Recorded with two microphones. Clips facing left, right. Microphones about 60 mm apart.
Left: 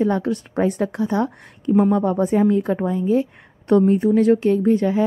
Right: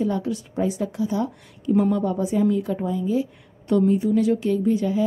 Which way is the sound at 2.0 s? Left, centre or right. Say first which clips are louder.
Left 4 dB; left.